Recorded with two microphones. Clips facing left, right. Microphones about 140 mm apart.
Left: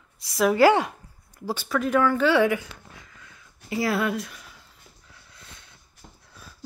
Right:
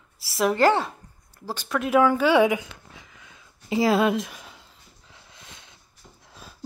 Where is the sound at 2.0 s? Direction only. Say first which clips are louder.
Right 3 dB; 15° right (ahead or behind).